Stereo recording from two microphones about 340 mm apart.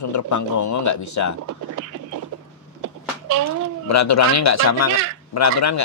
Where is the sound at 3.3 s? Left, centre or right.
Right.